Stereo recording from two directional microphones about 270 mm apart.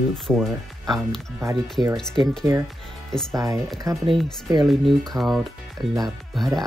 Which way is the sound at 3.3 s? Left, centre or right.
Centre.